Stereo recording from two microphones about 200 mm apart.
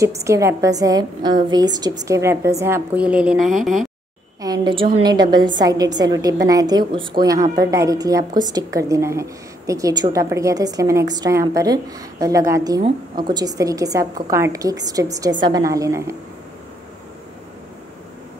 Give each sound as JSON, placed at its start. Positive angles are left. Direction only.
{"t": 0.0, "sound": "a woman's voice", "side_deg": -15}
{"t": 4.4, "sound": "a sound", "side_deg": -20}
{"t": 4.9, "sound": "a woman's voice", "side_deg": -20}